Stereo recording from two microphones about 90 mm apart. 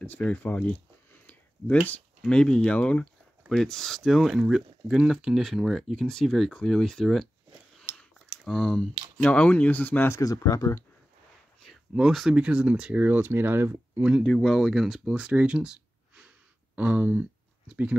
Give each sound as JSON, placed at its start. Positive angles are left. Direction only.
{"t": 0.0, "sound": "a sound", "side_deg": 20}
{"t": 2.2, "sound": "speech", "side_deg": 10}
{"t": 8.5, "sound": "speech", "side_deg": 5}
{"t": 10.2, "sound": "speech", "side_deg": 40}
{"t": 11.9, "sound": "speech", "side_deg": -5}
{"t": 14.2, "sound": "speech", "side_deg": 5}